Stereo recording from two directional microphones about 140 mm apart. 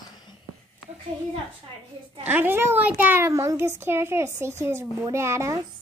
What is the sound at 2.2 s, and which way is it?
A child's voice, 15° right (ahead or behind).